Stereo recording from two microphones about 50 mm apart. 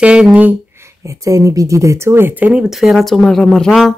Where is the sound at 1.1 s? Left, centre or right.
Right.